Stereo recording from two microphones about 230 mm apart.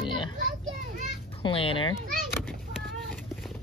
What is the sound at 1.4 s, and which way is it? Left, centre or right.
Speech, left.